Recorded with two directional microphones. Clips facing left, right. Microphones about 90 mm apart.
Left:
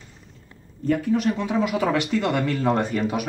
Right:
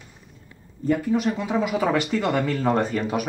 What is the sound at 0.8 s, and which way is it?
Speech, 5° right (ahead or behind).